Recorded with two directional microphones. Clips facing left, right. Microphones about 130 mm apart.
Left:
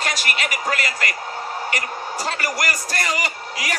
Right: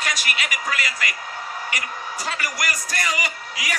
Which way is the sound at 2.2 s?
40° left (ahead or behind).